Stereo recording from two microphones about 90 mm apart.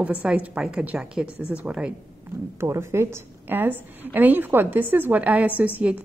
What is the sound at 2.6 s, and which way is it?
A woman's voice, 30° right (ahead or behind).